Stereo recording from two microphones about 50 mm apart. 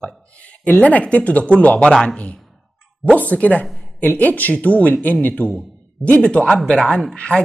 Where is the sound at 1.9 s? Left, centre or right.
Centre.